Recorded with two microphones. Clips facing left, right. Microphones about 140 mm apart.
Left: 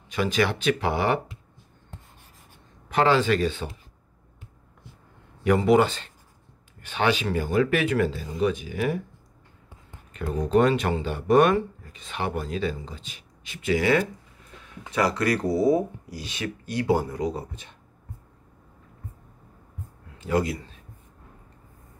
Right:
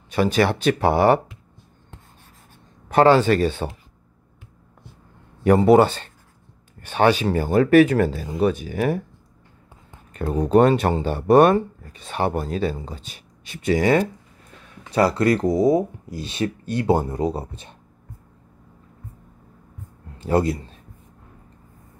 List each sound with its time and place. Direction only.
0.1 s speech: 40° right (ahead or behind)
2.9 s speech: 45° right (ahead or behind)
5.4 s speech: 40° right (ahead or behind)
10.1 s speech: 45° right (ahead or behind)
20.2 s a man's voice: 30° right (ahead or behind)